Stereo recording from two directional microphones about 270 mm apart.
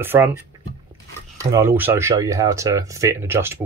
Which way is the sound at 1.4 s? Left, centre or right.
Centre.